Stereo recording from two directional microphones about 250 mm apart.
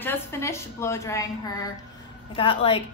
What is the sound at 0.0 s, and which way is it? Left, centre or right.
A woman's voice, centre.